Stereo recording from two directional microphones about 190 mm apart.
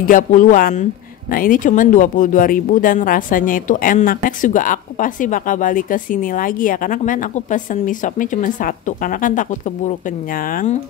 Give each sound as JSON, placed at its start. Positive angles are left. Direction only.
{"t": 0.0, "sound": "speech", "side_deg": 45}